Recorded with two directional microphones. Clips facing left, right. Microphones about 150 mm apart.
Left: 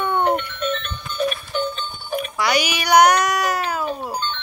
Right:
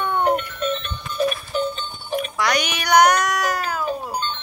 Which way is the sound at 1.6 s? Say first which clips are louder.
Even; 30° right (ahead or behind).